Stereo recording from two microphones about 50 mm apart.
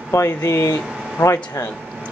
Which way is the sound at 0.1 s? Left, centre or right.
Left.